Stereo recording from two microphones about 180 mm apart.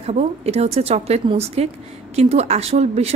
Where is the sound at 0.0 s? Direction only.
35° right (ahead or behind).